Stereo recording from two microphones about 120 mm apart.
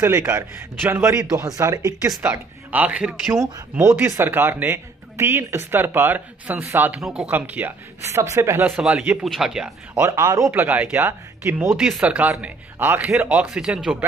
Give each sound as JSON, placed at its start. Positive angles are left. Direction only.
{"t": 0.0, "sound": "a man's voice", "side_deg": -20}
{"t": 2.7, "sound": "speech", "side_deg": -10}
{"t": 3.3, "sound": "a man's voice", "side_deg": -25}
{"t": 7.0, "sound": "speech", "side_deg": 0}
{"t": 7.2, "sound": "speech", "side_deg": -15}
{"t": 8.0, "sound": "a man's voice", "side_deg": -25}
{"t": 8.7, "sound": "speech", "side_deg": -5}
{"t": 9.9, "sound": "a man's voice", "side_deg": -25}
{"t": 10.5, "sound": "speech", "side_deg": -10}
{"t": 11.8, "sound": "speech", "side_deg": -10}